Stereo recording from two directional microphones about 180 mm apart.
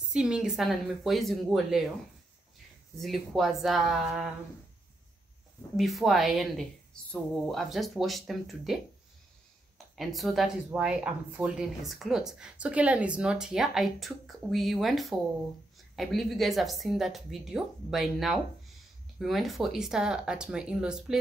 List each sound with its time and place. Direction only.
0.1 s speech: 5° right (ahead or behind)
3.0 s speech: centre (ahead or behind)
5.8 s speech: centre (ahead or behind)
9.9 s speech: centre (ahead or behind)